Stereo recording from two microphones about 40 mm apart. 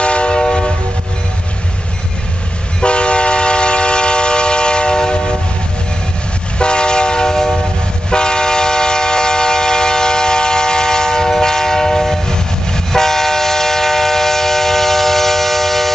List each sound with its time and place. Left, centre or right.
0.0 s train: left
2.8 s train: left
6.6 s train: left; by 15.9 s centre